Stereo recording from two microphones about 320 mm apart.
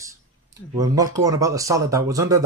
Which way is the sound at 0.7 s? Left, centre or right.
Centre.